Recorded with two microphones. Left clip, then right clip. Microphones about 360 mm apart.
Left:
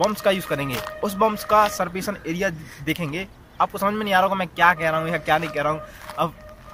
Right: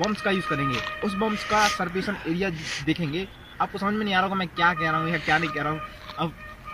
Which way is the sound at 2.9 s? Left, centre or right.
Centre.